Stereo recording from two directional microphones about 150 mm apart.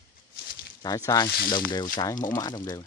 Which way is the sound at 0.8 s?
25° left (ahead or behind).